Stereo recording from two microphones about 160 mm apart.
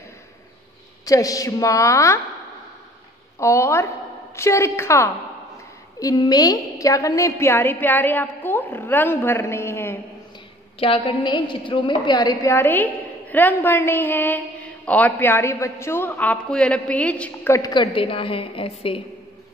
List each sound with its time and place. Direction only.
1.0 s a woman's voice: 20° left (ahead or behind)
3.3 s a woman's voice: 15° left (ahead or behind)
10.8 s a woman's voice: 35° left (ahead or behind); by 17.6 s 10° left (ahead or behind)
17.6 s a woman's voice: 25° left (ahead or behind)